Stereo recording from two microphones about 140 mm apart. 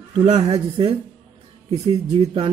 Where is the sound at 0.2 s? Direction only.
50° right (ahead or behind).